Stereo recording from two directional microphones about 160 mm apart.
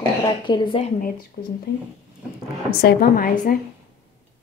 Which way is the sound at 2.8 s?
70° left (ahead or behind).